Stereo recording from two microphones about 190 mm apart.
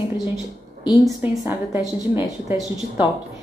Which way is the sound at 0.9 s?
Centre (ahead or behind).